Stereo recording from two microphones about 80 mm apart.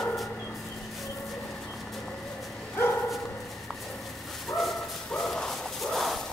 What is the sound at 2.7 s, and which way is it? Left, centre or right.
Dog, left.